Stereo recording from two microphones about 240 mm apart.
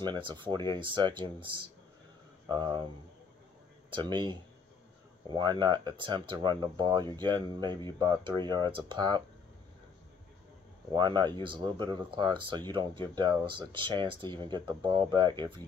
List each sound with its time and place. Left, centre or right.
0.0 s speech: centre
3.9 s speech: centre
10.9 s speech: centre